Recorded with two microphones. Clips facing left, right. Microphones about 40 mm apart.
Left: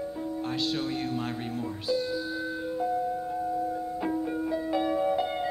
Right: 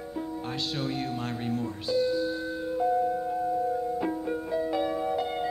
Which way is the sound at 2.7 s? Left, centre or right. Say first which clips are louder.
Right 4 dB; centre.